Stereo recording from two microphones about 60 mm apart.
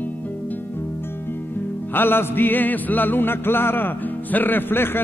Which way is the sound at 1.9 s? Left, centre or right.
Left.